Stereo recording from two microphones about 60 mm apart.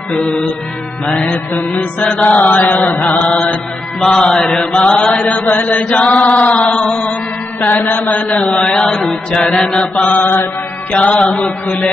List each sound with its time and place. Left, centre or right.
1.0 s mantra: centre
1.5 s chant: left
2.0 s mantra: centre
2.2 s chant: left
4.0 s mantra: centre
5.3 s chant: left
7.9 s chant: left
9.1 s mantra: centre
10.9 s chant: left